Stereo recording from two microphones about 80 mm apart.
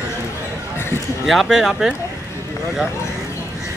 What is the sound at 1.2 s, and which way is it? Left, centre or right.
Speech, centre.